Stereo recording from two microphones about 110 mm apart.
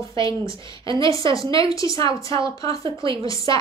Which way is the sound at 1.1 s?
30° left (ahead or behind).